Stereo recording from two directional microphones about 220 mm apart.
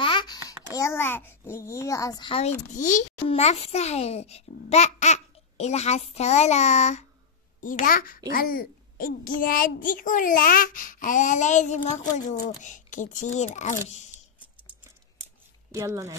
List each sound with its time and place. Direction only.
0.0 s a child's voice: 20° left (ahead or behind)
15.7 s speech: 15° right (ahead or behind)